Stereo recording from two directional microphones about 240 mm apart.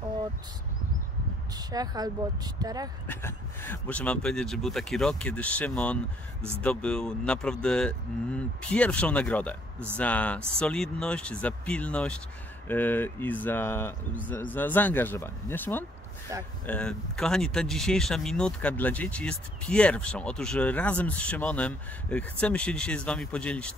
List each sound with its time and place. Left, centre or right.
1.5 s speech: centre
3.1 s speech: centre